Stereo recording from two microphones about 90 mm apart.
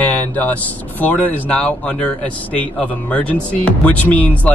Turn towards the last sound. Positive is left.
turn(degrees=15)  # may be behind; listen again after turning